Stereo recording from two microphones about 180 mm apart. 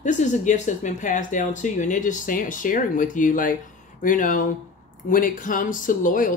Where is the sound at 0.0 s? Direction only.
40° left (ahead or behind).